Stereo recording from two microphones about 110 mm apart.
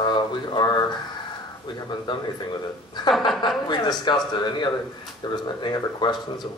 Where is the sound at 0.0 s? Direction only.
45° left (ahead or behind).